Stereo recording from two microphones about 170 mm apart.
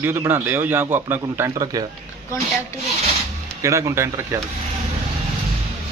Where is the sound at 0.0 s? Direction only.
15° right (ahead or behind).